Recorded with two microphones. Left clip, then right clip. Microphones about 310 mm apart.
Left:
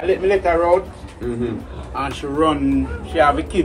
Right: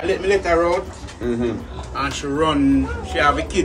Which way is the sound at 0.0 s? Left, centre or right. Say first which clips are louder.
Left 2 dB; centre.